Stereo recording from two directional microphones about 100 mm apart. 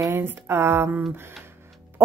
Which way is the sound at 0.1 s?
25° right (ahead or behind).